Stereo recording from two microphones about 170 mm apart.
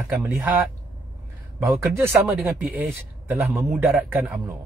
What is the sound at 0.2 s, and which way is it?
Speech, 15° right (ahead or behind).